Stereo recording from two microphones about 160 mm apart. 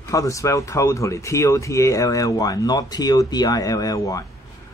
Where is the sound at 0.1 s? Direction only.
20° left (ahead or behind).